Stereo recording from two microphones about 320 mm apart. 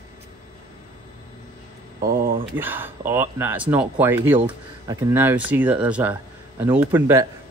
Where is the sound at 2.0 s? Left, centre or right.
Right.